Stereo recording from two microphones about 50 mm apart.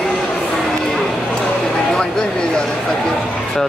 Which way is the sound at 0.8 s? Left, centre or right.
Centre.